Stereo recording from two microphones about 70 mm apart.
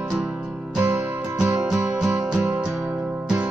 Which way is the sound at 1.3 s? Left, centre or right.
Centre.